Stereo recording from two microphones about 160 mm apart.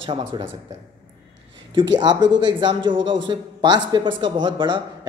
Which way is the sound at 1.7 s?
30° right (ahead or behind).